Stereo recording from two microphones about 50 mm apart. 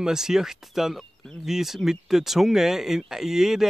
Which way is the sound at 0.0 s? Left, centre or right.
Centre.